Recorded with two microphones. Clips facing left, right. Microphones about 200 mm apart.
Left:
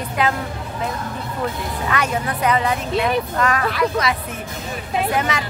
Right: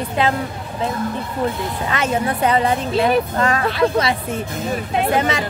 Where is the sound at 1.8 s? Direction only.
25° right (ahead or behind).